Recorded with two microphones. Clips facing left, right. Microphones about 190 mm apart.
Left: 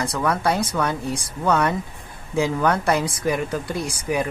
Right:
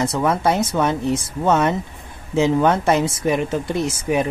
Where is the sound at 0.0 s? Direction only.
25° right (ahead or behind).